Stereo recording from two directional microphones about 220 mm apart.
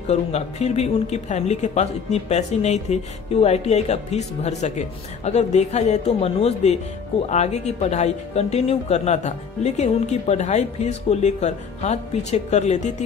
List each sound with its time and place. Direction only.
0.1 s speech: 30° left (ahead or behind)